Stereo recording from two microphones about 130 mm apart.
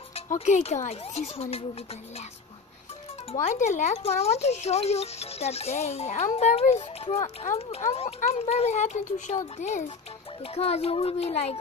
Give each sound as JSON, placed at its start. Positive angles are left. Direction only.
{"t": 0.3, "sound": "speech", "side_deg": 70}
{"t": 0.8, "sound": "a child's voice", "side_deg": 55}
{"t": 3.3, "sound": "a child's voice", "side_deg": 65}